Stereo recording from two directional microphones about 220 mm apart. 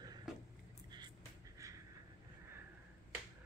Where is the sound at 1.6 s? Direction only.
15° right (ahead or behind).